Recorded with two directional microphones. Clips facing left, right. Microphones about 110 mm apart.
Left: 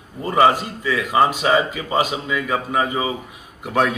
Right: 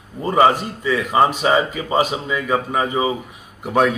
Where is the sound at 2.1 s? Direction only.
30° right (ahead or behind).